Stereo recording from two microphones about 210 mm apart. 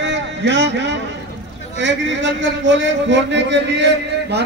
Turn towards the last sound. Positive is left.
turn(degrees=-55)  # may be behind; listen again after turning